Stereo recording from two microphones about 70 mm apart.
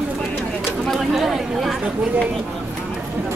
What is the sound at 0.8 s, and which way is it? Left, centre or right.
Speech, centre.